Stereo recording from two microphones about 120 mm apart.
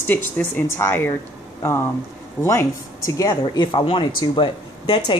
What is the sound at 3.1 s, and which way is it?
Speech, 30° left (ahead or behind).